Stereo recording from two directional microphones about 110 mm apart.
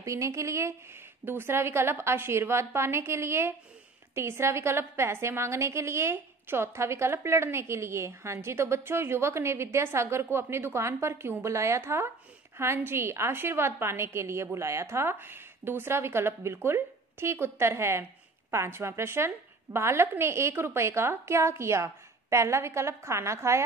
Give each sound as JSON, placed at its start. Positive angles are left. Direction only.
{"t": 0.0, "sound": "a woman's voice", "side_deg": -30}